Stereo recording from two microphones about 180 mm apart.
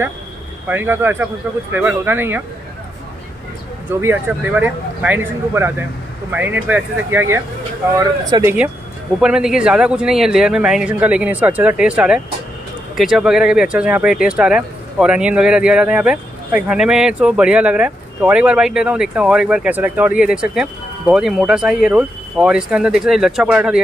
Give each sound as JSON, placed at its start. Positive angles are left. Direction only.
{"t": 0.7, "sound": "speech", "side_deg": -10}
{"t": 4.0, "sound": "speech", "side_deg": -10}
{"t": 9.2, "sound": "speech", "side_deg": -5}